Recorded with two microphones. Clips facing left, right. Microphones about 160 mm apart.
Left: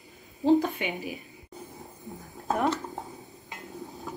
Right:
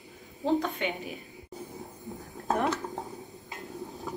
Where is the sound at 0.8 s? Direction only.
10° left (ahead or behind).